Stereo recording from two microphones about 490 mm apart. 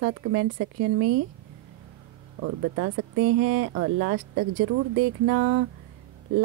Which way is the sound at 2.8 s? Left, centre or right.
Right.